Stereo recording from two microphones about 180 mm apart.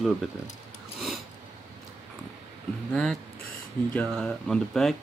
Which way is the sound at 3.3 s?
55° left (ahead or behind).